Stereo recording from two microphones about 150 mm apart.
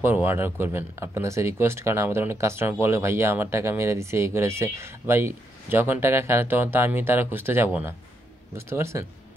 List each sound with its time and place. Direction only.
0.0 s speech: 15° right (ahead or behind)